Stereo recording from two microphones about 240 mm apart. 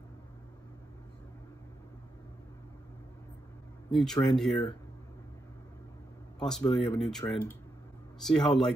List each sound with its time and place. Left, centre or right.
3.9 s speech: centre
6.4 s speech: centre